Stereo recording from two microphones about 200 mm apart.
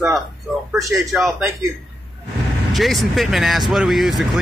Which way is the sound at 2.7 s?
Centre (ahead or behind).